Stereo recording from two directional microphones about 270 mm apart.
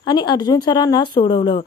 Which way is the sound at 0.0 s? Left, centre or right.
Centre.